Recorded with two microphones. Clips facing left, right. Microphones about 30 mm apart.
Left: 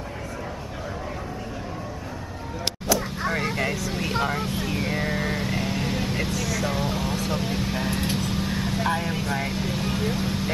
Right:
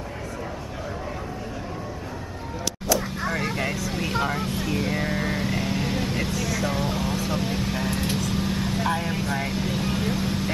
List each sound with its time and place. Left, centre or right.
2.9 s vehicle: centre